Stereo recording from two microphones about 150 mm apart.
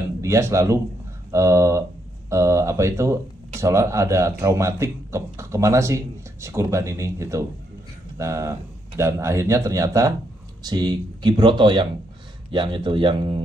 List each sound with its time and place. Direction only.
0.2 s a man's voice: 20° right (ahead or behind)